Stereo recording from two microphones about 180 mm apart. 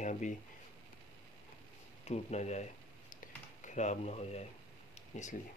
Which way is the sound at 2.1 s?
40° left (ahead or behind).